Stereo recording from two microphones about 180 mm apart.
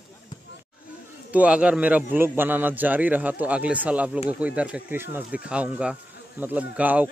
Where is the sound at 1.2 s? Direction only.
5° right (ahead or behind).